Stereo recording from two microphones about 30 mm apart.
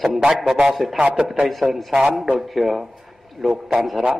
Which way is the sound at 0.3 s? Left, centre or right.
Centre.